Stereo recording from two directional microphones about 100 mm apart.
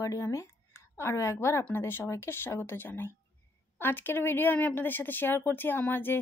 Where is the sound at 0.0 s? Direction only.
30° left (ahead or behind).